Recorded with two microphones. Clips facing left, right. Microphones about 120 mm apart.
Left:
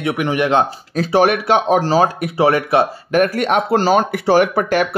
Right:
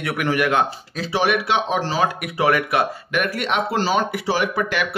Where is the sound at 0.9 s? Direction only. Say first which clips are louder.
Left 6 dB; 45° left (ahead or behind).